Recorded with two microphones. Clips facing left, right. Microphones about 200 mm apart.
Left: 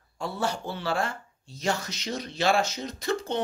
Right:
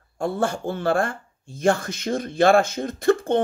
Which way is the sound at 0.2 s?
50° right (ahead or behind).